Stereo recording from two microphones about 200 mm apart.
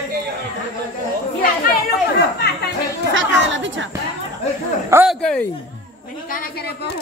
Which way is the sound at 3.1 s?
65° right (ahead or behind).